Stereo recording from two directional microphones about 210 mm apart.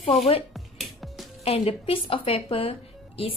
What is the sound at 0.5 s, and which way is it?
Music, centre (ahead or behind).